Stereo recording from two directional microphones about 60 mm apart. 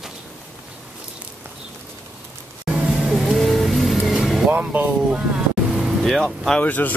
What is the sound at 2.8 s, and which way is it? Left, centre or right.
Vehicle, centre.